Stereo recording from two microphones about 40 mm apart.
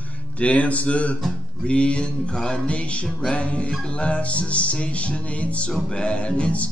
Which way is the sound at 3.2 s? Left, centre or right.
Left.